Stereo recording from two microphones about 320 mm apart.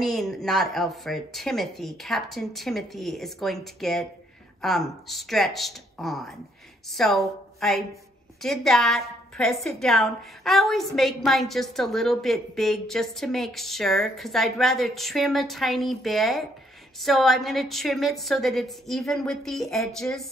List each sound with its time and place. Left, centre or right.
0.0 s a woman's voice: centre